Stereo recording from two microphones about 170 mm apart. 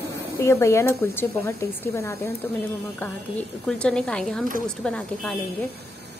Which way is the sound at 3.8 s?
5° left (ahead or behind).